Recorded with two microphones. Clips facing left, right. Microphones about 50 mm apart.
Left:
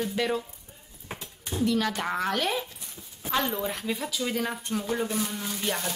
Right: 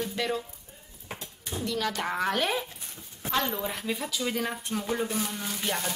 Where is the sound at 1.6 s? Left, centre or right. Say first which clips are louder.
Left 2 dB; centre.